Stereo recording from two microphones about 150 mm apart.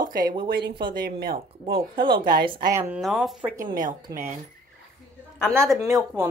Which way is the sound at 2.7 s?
20° right (ahead or behind).